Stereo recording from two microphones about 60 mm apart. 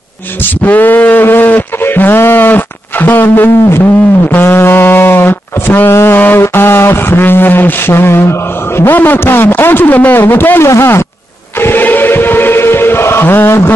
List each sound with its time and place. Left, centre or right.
0.7 s a sound: left
3.6 s speech: left
4.3 s a sound: left
8.9 s a man's voice: left
10.6 s speech: left
11.6 s chant: left